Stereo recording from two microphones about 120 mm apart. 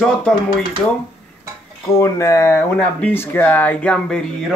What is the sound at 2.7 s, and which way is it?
Speech, 15° left (ahead or behind).